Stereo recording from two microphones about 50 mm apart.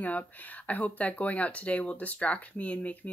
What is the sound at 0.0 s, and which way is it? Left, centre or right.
Speech, left.